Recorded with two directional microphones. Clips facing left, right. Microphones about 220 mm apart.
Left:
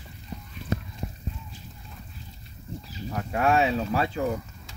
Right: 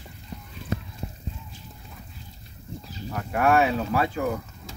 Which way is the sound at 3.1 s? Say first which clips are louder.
Right 2 dB; 25° left (ahead or behind).